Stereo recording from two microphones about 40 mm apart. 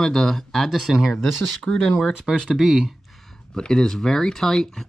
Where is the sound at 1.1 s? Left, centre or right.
Centre.